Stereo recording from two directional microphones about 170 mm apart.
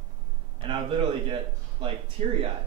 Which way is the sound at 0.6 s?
30° right (ahead or behind).